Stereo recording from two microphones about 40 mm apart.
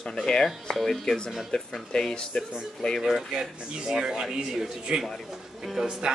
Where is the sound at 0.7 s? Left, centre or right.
Centre.